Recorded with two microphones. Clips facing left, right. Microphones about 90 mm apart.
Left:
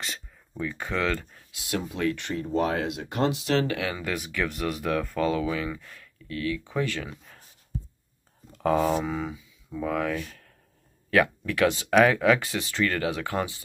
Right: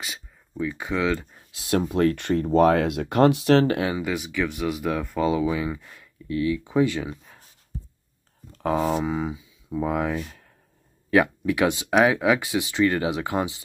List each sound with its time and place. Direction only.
0.0 s speech: 5° right (ahead or behind)
1.5 s speech: 40° right (ahead or behind)
4.0 s speech: 5° right (ahead or behind)
8.5 s a sound: 5° left (ahead or behind)
8.7 s speech: 10° right (ahead or behind)